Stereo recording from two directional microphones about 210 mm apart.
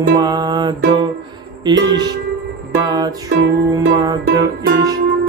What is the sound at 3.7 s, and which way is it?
Speech, 20° right (ahead or behind).